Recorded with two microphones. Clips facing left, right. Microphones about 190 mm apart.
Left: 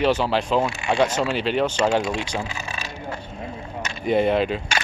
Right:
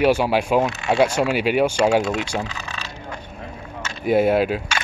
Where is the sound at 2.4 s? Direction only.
15° left (ahead or behind).